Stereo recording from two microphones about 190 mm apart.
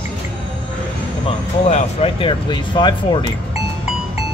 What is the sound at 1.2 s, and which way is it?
Speech, 35° left (ahead or behind).